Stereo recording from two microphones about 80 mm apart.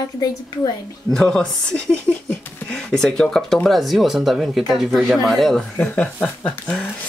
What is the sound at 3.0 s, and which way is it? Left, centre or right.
Speech, centre.